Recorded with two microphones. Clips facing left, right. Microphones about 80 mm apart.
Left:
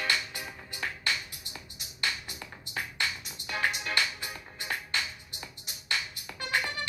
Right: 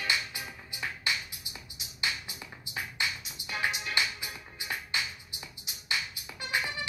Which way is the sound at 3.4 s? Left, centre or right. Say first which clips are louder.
Left 2 dB; left.